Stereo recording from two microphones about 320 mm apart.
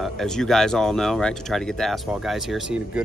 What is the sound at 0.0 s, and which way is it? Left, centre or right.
Speech, centre.